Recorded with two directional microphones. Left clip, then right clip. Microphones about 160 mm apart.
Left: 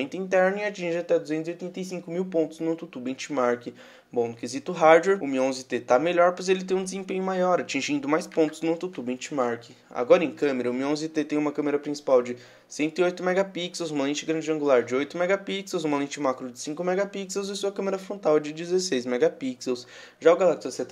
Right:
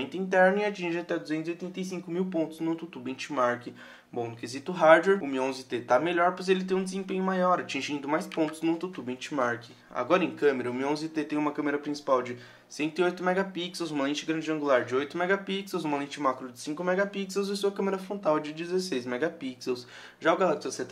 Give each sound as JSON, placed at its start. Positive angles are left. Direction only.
{"t": 0.0, "sound": "speech", "side_deg": 35}